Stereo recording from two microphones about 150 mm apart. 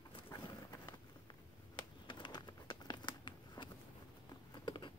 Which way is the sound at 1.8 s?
30° left (ahead or behind).